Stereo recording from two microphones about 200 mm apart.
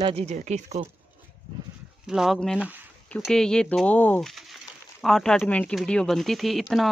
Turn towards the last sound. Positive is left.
turn(degrees=0)  # may be behind; listen again after turning